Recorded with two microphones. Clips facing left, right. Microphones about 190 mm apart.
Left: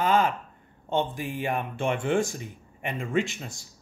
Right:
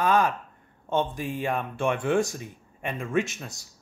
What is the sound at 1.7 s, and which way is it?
Speech, 25° left (ahead or behind).